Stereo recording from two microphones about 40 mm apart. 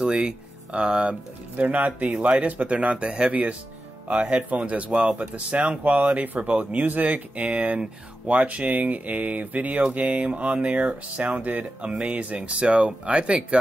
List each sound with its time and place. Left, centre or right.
0.0 s a sound: right
0.7 s speech: right
1.6 s speech: right
2.0 s speech: right
2.3 s speech: right
4.1 s speech: right